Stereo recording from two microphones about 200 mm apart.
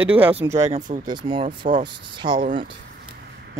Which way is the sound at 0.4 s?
15° right (ahead or behind).